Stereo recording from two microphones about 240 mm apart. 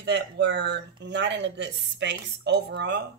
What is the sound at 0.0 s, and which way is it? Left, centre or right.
Speech, right.